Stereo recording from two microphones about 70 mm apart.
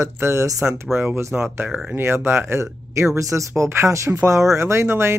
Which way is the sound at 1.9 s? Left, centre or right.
Right.